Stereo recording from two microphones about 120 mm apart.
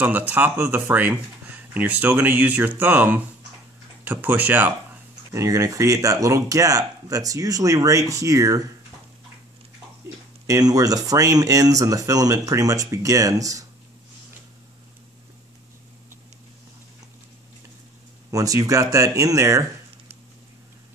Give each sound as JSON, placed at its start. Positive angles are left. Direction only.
{"t": 0.0, "sound": "speech", "side_deg": -15}
{"t": 5.3, "sound": "speech", "side_deg": -25}
{"t": 10.4, "sound": "speech", "side_deg": -30}
{"t": 18.3, "sound": "speech", "side_deg": -30}